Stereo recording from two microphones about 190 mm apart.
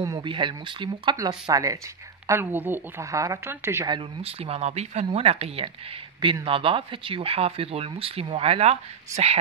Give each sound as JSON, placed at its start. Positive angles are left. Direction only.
{"t": 0.0, "sound": "a woman's voice", "side_deg": -20}